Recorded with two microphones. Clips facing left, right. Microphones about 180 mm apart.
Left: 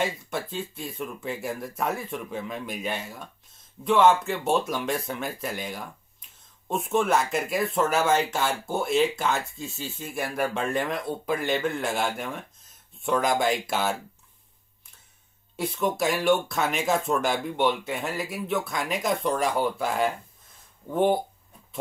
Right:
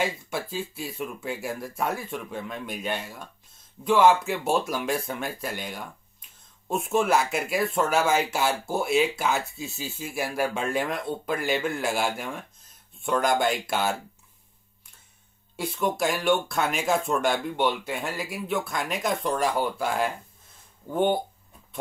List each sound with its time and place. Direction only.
0.0 s speech: 5° right (ahead or behind)
15.5 s speech: centre (ahead or behind)